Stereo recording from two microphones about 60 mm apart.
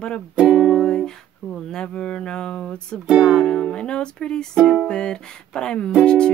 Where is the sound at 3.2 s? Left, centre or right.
Centre.